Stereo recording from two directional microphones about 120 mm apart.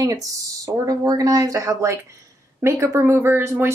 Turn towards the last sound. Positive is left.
turn(degrees=-20)  # may be behind; listen again after turning